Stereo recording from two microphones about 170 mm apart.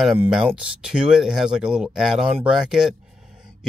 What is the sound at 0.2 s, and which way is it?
Speech, centre (ahead or behind).